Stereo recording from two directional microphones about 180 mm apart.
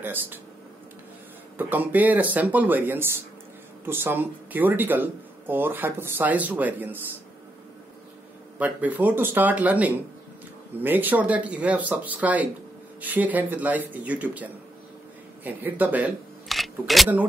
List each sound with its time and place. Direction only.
0.0 s speech: 10° right (ahead or behind)
1.6 s speech: 10° right (ahead or behind)
8.5 s speech: 10° right (ahead or behind)